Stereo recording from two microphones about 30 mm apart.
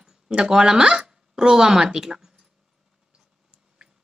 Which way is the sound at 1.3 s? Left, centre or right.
Right.